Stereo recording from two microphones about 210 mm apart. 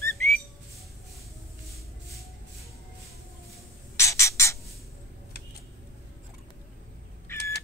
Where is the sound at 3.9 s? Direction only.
15° left (ahead or behind).